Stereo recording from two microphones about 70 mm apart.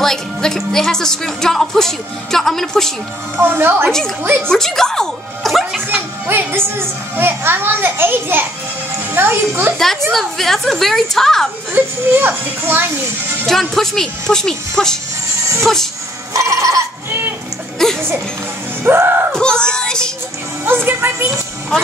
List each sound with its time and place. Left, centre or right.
0.0 s a woman's voice: centre
3.4 s a child's voice: right
4.4 s speech: centre
6.2 s a child's voice: right
10.1 s a woman's voice: centre
11.7 s a child's voice: right
13.5 s a woman's voice: centre
16.3 s goat: right
17.8 s music: centre
18.9 s a child's voice: right
19.3 s speech: centre
20.6 s a child's voice: right